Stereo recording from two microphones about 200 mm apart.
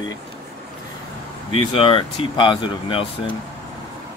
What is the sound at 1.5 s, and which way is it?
Speech, 25° left (ahead or behind).